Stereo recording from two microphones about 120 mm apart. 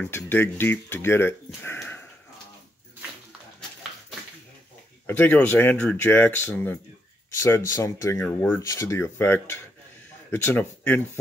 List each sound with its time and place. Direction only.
0.0 s speech: 15° left (ahead or behind)
1.6 s sniff: 20° left (ahead or behind)
5.0 s speech: 15° left (ahead or behind)